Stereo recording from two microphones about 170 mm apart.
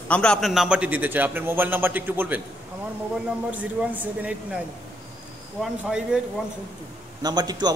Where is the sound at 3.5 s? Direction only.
10° right (ahead or behind).